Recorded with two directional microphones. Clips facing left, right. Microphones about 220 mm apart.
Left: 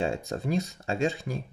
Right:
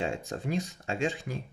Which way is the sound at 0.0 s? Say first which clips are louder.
Left 3 dB; 35° left (ahead or behind).